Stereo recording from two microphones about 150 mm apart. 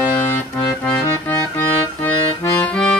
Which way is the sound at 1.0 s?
15° left (ahead or behind).